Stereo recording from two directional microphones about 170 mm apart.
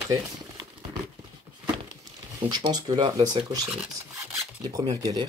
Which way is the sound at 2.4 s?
25° right (ahead or behind).